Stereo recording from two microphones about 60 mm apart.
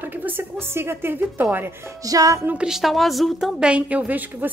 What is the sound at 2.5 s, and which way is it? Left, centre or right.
Speech, centre.